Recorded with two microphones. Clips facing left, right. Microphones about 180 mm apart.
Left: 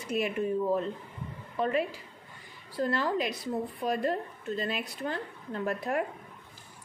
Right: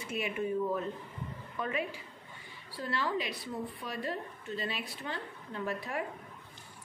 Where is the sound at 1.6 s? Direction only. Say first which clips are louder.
Left 7 dB; 35° left (ahead or behind).